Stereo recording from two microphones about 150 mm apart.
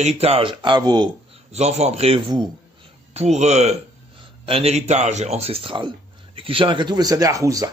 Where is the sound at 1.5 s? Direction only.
45° right (ahead or behind).